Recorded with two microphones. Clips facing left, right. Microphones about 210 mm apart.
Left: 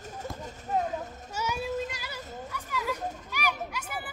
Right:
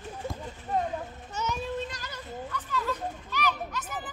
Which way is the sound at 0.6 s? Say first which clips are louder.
Even; 5° left (ahead or behind).